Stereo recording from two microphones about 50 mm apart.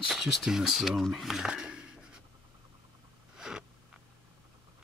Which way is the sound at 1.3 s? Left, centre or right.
Centre.